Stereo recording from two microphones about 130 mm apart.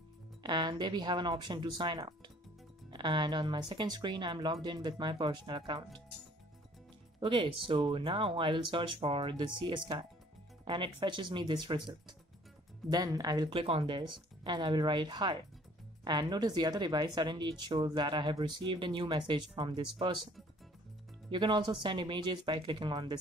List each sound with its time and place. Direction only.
0.4 s speech: 35° right (ahead or behind)
7.2 s speech: 40° right (ahead or behind)
12.9 s speech: 30° right (ahead or behind)
13.6 s speech: 45° right (ahead or behind)
21.3 s speech: 35° right (ahead or behind)